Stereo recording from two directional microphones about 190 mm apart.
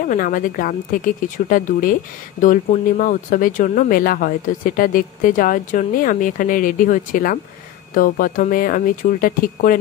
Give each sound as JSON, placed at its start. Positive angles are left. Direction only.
{"t": 0.0, "sound": "speech", "side_deg": 45}